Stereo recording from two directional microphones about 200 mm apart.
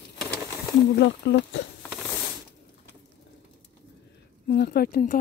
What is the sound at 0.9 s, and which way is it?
Speech, 60° left (ahead or behind).